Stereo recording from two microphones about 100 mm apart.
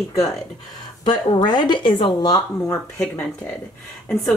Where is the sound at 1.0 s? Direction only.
50° left (ahead or behind).